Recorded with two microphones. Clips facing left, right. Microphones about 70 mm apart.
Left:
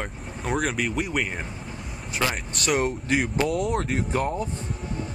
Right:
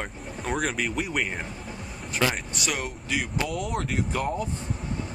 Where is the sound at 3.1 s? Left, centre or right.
Left.